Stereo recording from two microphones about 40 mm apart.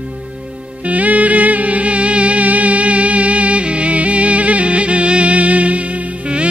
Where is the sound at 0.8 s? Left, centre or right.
Right.